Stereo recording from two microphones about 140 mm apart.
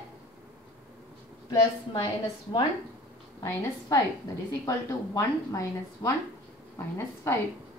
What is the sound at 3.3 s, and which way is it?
A woman's voice, 25° left (ahead or behind).